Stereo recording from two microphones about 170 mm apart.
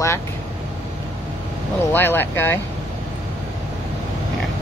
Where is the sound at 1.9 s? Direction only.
15° left (ahead or behind).